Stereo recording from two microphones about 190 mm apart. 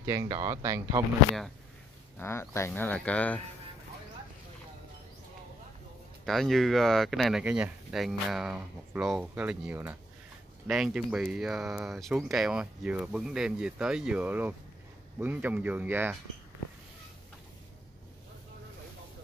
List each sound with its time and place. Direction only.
0.0 s speech: 15° right (ahead or behind)
2.1 s speech: 15° left (ahead or behind)
6.2 s speech: centre (ahead or behind)